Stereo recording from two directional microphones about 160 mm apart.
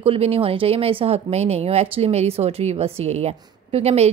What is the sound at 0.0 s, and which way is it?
Speech, 35° right (ahead or behind).